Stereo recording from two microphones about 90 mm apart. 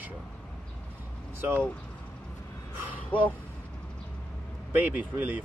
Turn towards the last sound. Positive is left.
turn(degrees=-15)  # may be behind; listen again after turning